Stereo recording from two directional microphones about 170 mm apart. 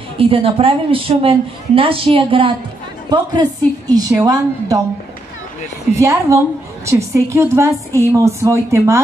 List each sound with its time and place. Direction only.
0.2 s a woman's voice: 35° right (ahead or behind)
5.9 s a woman's voice: 15° right (ahead or behind)